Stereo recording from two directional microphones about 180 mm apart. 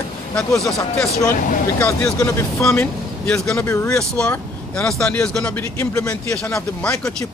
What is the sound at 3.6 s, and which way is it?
Speech, 15° left (ahead or behind).